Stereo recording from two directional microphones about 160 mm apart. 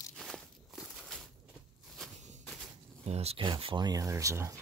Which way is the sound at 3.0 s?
40° right (ahead or behind).